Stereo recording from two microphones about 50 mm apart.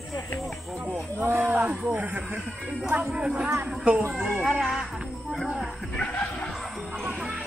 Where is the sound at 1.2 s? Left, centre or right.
Right.